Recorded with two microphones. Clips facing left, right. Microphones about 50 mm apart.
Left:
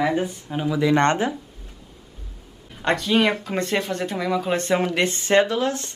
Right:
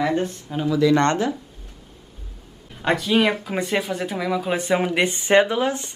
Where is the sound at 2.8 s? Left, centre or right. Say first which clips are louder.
Right 1 dB; centre.